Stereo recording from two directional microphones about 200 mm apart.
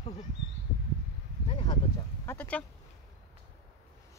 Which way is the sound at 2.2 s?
10° left (ahead or behind).